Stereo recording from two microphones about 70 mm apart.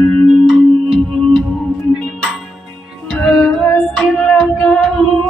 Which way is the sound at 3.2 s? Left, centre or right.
Centre.